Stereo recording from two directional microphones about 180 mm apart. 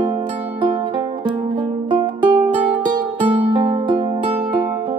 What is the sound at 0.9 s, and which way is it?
Music, 25° right (ahead or behind).